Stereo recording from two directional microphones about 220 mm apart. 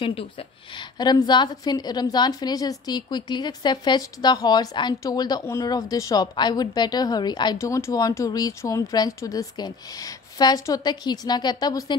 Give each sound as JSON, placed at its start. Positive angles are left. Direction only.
{"t": 0.0, "sound": "a woman's voice", "side_deg": 25}